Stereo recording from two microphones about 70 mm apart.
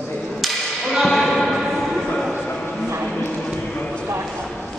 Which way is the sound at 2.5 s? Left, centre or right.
Centre.